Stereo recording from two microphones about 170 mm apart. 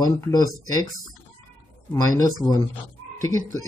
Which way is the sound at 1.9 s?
20° left (ahead or behind).